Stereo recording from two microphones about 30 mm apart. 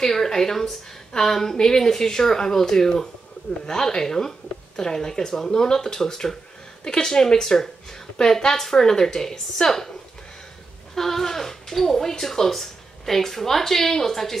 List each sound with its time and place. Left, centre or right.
0.0 s a woman's voice: centre
11.0 s speech: centre